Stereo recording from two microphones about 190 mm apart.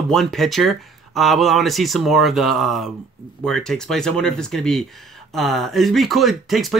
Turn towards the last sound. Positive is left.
turn(degrees=0)  # may be behind; listen again after turning